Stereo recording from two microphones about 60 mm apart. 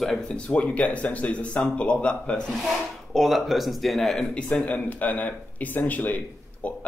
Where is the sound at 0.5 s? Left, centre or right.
Left.